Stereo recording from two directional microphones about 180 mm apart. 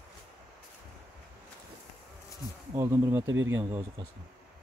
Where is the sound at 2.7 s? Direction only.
15° right (ahead or behind).